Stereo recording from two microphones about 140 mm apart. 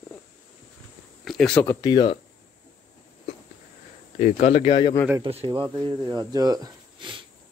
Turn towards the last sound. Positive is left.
turn(degrees=-35)  # may be behind; listen again after turning